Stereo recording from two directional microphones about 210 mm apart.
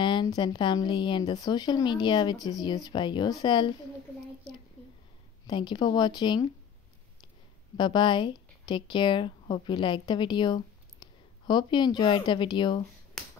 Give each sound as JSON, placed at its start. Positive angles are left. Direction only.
{"t": 0.0, "sound": "speech", "side_deg": 20}
{"t": 5.5, "sound": "speech", "side_deg": 20}
{"t": 7.7, "sound": "speech", "side_deg": 20}